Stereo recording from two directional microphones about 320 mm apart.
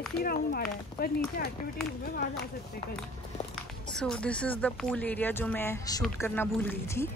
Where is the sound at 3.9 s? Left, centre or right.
Centre.